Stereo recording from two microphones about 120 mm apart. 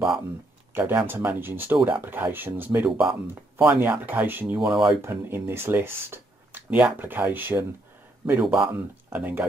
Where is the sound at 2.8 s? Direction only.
5° right (ahead or behind).